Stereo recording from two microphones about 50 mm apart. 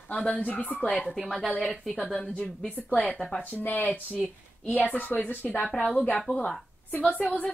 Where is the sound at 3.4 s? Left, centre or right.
Left.